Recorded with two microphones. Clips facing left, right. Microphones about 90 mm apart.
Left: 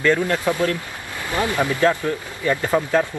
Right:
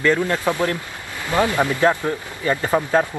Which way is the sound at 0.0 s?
15° right (ahead or behind).